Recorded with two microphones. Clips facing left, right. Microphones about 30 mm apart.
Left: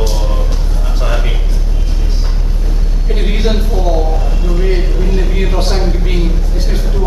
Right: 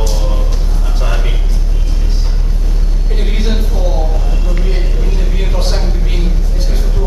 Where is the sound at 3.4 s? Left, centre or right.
Centre.